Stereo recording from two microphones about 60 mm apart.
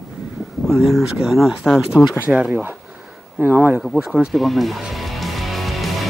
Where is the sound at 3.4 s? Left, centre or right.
Right.